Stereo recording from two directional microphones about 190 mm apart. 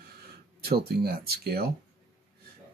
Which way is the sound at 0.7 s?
55° right (ahead or behind).